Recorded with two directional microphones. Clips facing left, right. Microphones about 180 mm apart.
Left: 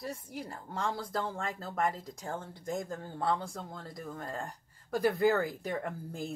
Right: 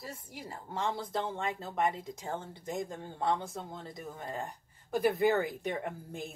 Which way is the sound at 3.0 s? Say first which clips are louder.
Right 1 dB; 20° right (ahead or behind).